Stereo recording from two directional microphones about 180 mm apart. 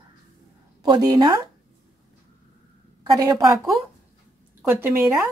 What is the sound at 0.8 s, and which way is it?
Speech, 25° right (ahead or behind).